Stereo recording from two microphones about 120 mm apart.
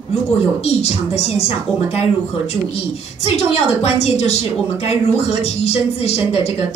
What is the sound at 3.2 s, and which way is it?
A woman's voice, 60° left (ahead or behind).